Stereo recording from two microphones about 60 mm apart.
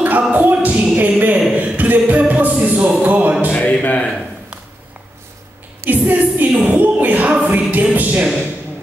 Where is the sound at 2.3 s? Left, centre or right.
Right.